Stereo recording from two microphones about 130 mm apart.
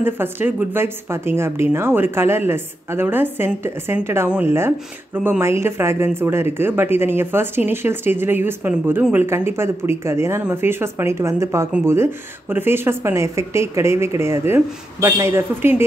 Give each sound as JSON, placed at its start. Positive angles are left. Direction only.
{"t": 0.0, "sound": "speech", "side_deg": -15}